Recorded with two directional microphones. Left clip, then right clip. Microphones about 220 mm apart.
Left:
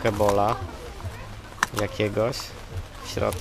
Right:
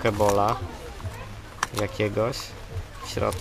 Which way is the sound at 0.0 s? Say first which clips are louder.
Even; centre (ahead or behind).